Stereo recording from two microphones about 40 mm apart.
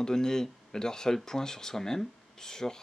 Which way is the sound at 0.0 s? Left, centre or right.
Centre.